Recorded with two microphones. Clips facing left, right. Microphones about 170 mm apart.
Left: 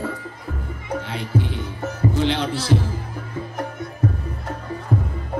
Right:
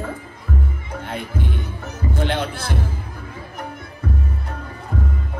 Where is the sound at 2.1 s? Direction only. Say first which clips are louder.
Even; 55° right (ahead or behind).